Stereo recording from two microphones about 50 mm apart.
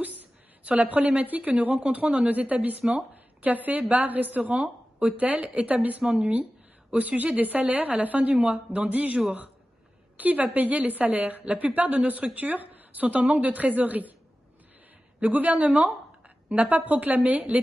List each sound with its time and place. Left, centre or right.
0.0 s a woman's voice: right
15.1 s a woman's voice: right